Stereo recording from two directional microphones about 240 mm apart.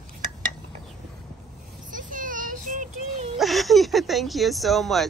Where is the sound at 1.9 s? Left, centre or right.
Right.